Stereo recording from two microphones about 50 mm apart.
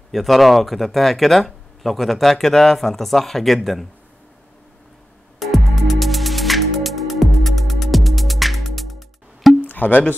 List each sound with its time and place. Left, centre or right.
0.1 s speech: centre
5.4 s music: centre
9.6 s a sound: left